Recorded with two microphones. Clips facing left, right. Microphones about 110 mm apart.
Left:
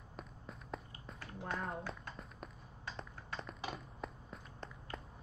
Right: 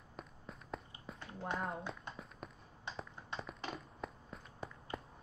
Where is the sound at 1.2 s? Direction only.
20° right (ahead or behind).